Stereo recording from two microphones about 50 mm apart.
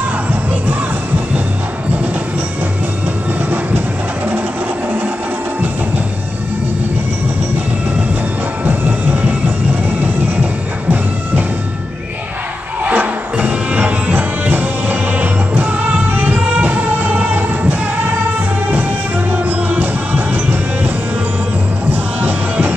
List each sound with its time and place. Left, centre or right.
8.6 s music: right
12.9 s music: right
13.5 s music: right
19.3 s music: right
22.2 s music: right